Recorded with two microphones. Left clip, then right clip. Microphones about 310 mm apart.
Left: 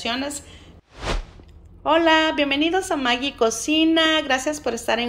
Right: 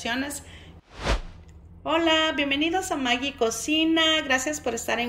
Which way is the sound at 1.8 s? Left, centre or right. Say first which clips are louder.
Left 5 dB; centre.